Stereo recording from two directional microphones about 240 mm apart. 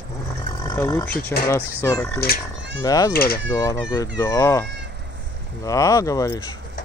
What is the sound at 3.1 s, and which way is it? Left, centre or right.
Speech, left.